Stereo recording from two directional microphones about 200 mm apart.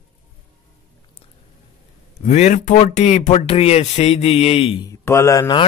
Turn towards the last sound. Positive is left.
turn(degrees=20)  # may be behind; listen again after turning